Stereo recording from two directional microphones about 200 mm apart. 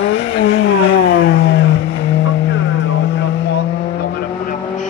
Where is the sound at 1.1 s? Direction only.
50° left (ahead or behind).